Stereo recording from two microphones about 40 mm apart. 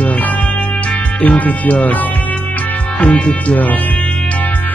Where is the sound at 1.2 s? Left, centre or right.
Left.